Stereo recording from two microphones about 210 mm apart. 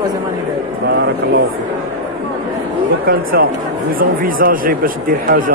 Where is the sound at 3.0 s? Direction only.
45° right (ahead or behind).